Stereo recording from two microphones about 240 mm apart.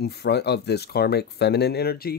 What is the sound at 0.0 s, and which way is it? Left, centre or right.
Speech, left.